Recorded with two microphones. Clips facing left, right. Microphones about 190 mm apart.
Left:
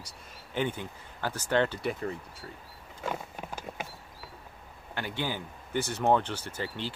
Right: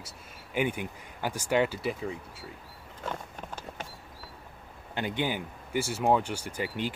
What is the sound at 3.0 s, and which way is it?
Horse, 10° left (ahead or behind).